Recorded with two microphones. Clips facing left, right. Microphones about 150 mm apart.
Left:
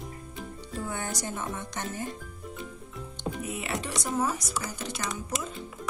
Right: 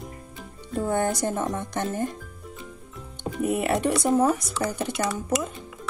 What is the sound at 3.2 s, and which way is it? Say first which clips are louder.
Speech: right 9 dB; 55° right (ahead or behind).